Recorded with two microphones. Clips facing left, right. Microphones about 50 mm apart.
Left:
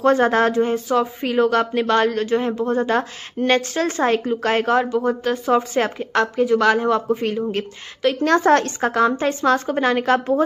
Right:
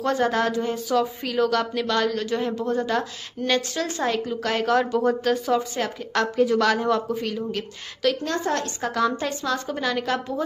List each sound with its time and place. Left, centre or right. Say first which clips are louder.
0.0 s speech: left 6 dB; left
4.7 s speech: left 2 dB; centre
5.6 s speech: left 6 dB; left
6.2 s speech: left 3 dB; centre
8.2 s a woman's voice: left 10 dB; left
8.8 s speech: left 6 dB; left